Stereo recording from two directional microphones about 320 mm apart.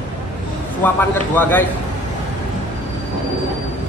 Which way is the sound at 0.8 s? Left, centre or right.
Centre.